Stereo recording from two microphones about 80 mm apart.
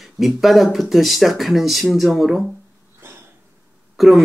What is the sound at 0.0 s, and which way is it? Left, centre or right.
Speech, centre.